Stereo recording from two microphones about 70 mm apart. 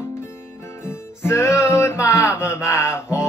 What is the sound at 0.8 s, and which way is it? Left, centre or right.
Music, left.